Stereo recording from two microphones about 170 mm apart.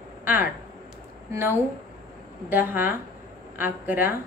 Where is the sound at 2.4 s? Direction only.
10° right (ahead or behind).